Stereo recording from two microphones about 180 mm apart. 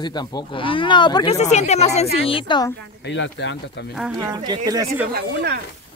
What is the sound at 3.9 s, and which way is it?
Speech, centre (ahead or behind).